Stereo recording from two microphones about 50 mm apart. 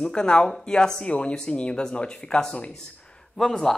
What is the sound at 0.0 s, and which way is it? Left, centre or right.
Speech, centre.